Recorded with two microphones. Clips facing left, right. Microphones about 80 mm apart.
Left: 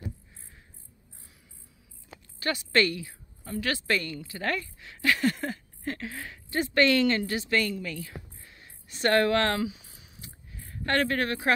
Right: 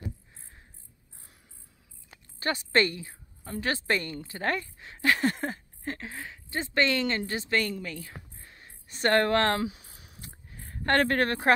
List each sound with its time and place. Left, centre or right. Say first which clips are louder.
2.4 s a woman's voice: even; right